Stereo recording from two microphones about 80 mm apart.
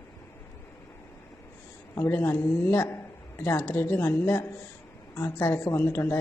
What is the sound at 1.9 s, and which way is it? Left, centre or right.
A man's voice, left.